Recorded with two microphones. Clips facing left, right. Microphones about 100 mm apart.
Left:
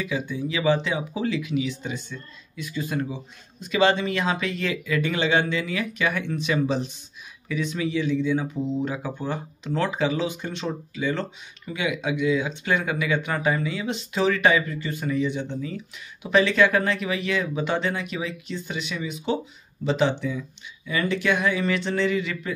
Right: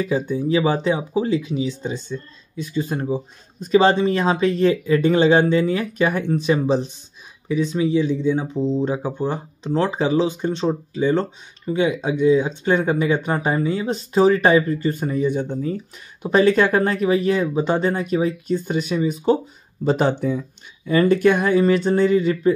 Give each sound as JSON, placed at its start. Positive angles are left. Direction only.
{"t": 0.0, "sound": "speech", "side_deg": -40}